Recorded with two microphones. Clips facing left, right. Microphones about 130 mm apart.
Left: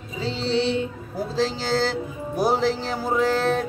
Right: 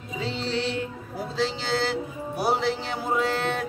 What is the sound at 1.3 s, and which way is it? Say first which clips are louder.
Music: left 3 dB; 40° left (ahead or behind).